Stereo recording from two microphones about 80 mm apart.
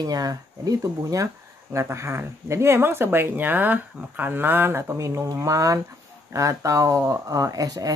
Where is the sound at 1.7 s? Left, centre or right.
Right.